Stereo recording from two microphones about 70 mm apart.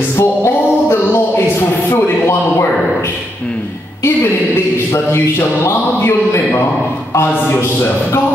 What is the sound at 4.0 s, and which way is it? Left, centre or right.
Speech, left.